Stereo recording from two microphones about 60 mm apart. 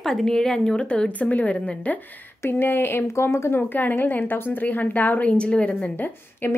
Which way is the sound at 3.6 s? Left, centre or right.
Left.